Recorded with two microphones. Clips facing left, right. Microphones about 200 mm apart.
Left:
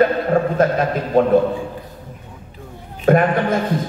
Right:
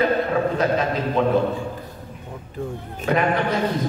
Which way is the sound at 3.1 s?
50° left (ahead or behind).